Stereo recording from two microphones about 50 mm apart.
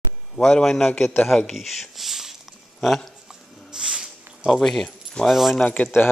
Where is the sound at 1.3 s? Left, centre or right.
Centre.